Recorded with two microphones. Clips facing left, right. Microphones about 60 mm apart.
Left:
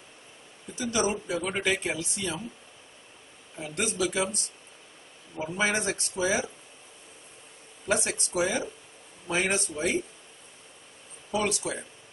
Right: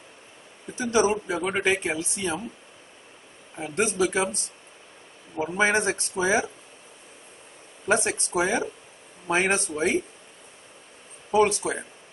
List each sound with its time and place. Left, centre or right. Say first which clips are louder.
0.7 s speech: right 6 dB; right
3.5 s a man's voice: right 5 dB; right
7.8 s a man's voice: right 5 dB; right
11.3 s a man's voice: right 7 dB; right